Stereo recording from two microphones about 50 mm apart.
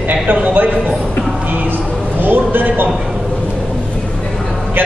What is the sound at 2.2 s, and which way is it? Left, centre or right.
Speech, right.